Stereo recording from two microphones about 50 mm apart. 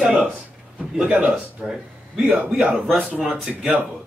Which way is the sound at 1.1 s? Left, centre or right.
Right.